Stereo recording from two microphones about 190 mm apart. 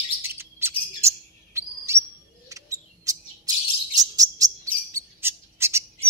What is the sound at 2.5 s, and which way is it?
Bird, 15° right (ahead or behind).